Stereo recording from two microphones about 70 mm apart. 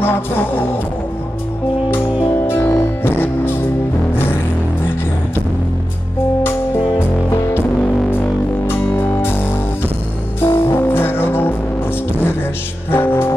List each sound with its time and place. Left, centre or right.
0.0 s music: left
2.4 s music: left
8.6 s music: left
10.4 s music: left
12.9 s music: left